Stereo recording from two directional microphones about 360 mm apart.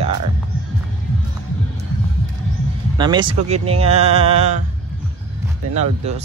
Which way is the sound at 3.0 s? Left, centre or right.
Centre.